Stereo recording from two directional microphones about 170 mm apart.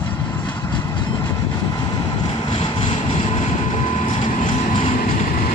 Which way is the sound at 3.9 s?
45° left (ahead or behind).